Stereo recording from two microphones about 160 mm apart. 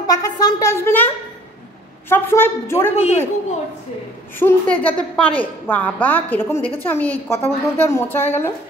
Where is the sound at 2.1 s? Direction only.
15° left (ahead or behind).